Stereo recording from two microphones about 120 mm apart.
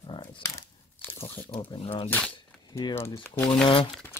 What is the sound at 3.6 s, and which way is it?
Speech, 40° left (ahead or behind).